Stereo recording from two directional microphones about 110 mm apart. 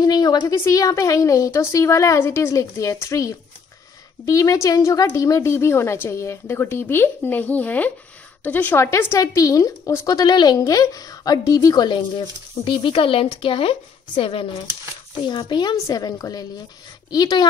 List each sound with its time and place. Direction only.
0.0 s a woman's voice: 40° left (ahead or behind)
10.1 s a woman's voice: 40° left (ahead or behind); by 14.6 s 55° left (ahead or behind)
15.2 s a woman's voice: 45° left (ahead or behind)